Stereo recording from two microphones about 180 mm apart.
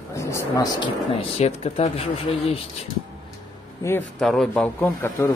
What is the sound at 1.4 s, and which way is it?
Speech, 35° left (ahead or behind).